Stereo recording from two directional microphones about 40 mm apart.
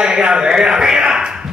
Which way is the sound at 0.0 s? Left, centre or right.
Right.